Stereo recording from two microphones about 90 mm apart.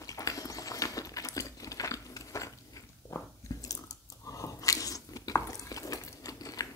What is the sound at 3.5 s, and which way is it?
Biting, 40° left (ahead or behind).